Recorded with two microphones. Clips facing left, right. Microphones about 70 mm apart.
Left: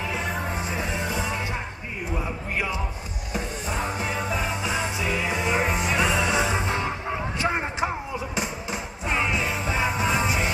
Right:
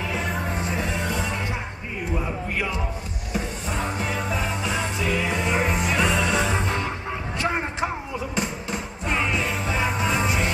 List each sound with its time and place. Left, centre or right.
0.0 s music: centre